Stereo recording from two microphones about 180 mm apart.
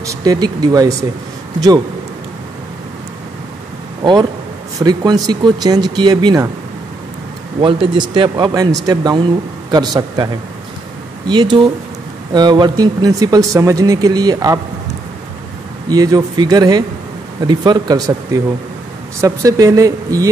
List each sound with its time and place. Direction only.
0.0 s speech: 20° right (ahead or behind)
4.0 s speech: 25° right (ahead or behind)
7.6 s speech: 25° right (ahead or behind)
15.9 s speech: 20° right (ahead or behind)